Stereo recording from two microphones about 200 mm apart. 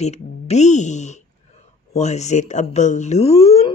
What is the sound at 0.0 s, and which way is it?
Speech, 35° left (ahead or behind).